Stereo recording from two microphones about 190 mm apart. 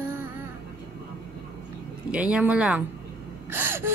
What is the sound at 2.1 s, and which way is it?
Speech, 5° right (ahead or behind).